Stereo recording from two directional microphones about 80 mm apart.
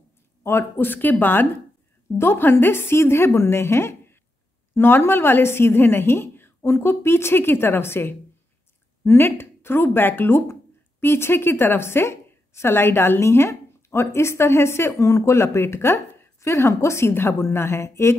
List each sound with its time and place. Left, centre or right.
0.4 s a woman's voice: left